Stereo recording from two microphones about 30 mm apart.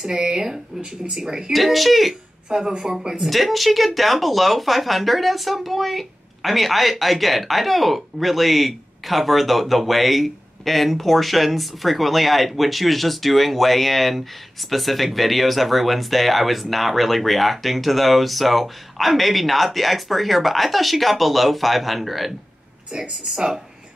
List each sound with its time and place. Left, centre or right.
0.0 s speech: right
1.5 s speech: centre
2.5 s speech: right
3.3 s speech: centre
22.8 s a woman's voice: right